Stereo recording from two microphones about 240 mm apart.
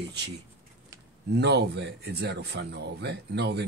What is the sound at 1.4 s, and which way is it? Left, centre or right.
Speech, right.